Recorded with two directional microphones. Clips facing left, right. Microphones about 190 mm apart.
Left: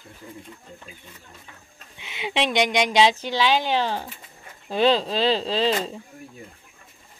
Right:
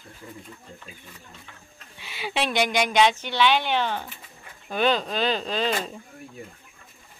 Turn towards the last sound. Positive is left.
turn(degrees=30)  # may be behind; listen again after turning